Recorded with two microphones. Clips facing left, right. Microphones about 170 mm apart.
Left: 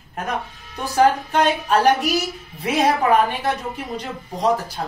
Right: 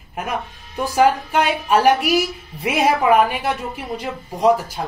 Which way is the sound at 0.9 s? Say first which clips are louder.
Even; 10° right (ahead or behind).